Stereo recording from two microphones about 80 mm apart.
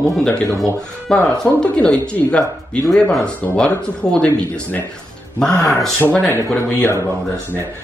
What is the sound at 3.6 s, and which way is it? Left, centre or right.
Speech, centre.